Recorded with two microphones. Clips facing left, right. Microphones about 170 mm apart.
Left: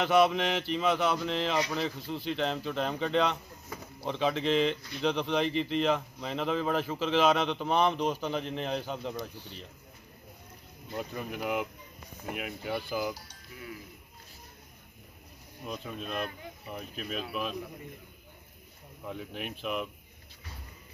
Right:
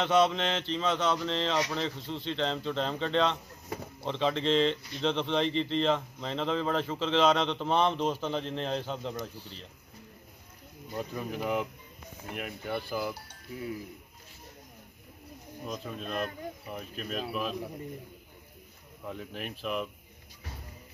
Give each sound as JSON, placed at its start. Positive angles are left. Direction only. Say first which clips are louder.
{"t": 0.3, "sound": "a man's voice", "louder": "left 1 dB", "side_deg": 10}
{"t": 11.1, "sound": "a man's voice", "louder": "right 1 dB", "side_deg": 5}
{"t": 13.5, "sound": "speech", "louder": "right 8 dB", "side_deg": -35}
{"t": 15.6, "sound": "a man's voice", "louder": "even", "side_deg": 0}
{"t": 19.0, "sound": "a man's voice", "louder": "even", "side_deg": 0}